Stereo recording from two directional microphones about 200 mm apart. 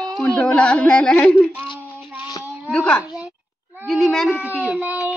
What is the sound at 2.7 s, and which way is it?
Speech, 5° left (ahead or behind).